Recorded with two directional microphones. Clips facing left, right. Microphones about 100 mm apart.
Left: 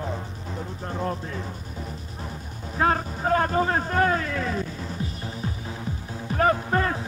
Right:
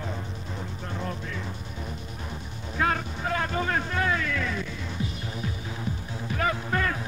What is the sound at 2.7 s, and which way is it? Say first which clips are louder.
Speech: left 4 dB; 35° left (ahead or behind).